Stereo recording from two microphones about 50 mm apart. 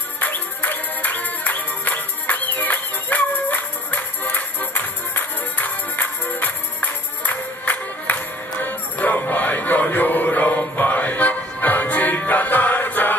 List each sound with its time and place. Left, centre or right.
0.2 s music: left